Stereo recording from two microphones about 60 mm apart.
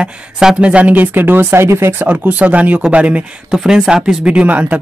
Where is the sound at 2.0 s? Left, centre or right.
Right.